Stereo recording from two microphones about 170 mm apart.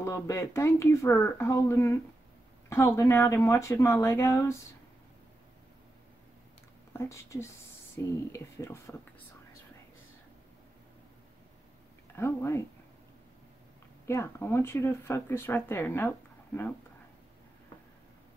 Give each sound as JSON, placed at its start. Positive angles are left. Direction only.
{"t": 0.0, "sound": "speech", "side_deg": 15}
{"t": 6.9, "sound": "speech", "side_deg": 15}
{"t": 12.2, "sound": "speech", "side_deg": 15}
{"t": 14.0, "sound": "speech", "side_deg": 15}